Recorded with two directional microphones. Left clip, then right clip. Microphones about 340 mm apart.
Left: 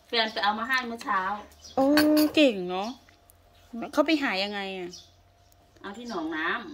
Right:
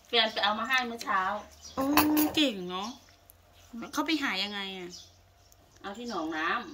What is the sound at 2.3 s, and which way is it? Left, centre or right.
A woman's voice, centre.